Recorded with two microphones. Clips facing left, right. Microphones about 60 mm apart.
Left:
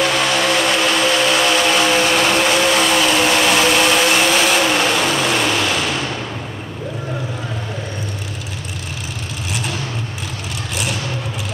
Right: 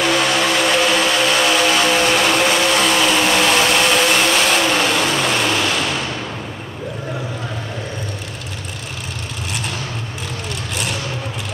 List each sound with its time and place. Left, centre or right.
0.0 s vehicle: centre
9.5 s vehicle: centre